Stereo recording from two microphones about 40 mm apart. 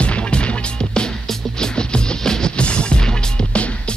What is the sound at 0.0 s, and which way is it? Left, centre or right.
Music, left.